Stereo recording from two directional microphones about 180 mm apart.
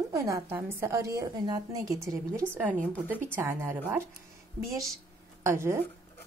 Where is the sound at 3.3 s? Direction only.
10° right (ahead or behind).